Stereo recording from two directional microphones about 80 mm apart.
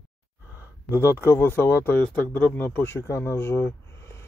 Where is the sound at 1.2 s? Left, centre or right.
Left.